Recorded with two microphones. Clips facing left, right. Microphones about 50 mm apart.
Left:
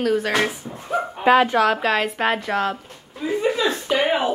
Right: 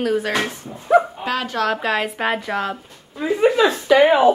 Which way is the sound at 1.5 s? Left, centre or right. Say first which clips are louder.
Left 2 dB; centre.